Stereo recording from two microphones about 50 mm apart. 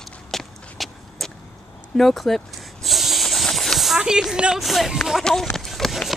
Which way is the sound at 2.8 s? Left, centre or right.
Centre.